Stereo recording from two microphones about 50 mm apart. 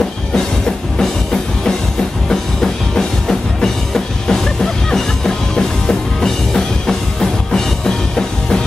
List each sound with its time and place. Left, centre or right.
0.9 s music: centre